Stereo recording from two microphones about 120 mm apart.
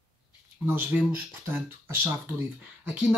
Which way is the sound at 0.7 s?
15° right (ahead or behind).